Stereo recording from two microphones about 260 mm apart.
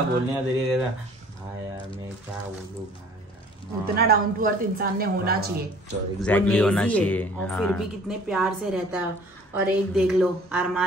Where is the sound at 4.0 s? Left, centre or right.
Right.